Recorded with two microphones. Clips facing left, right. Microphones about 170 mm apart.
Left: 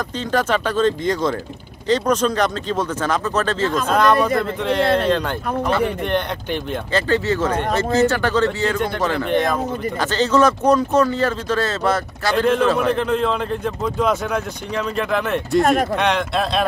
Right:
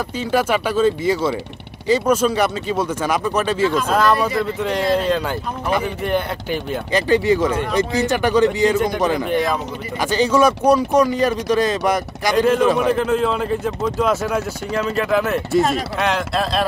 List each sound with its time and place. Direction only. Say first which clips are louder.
0.3 s speech: right 1 dB; 10° right (ahead or behind)
4.8 s speech: even; 60° left (ahead or behind)
5.7 s speech: right 1 dB; 10° right (ahead or behind)
15.6 s speech: left 3 dB; 60° left (ahead or behind)
16.0 s speech: left 1 dB; centre (ahead or behind)